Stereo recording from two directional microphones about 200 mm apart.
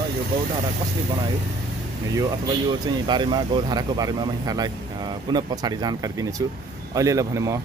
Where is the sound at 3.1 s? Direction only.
20° right (ahead or behind).